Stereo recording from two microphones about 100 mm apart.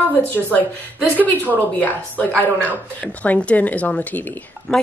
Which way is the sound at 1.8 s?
15° left (ahead or behind).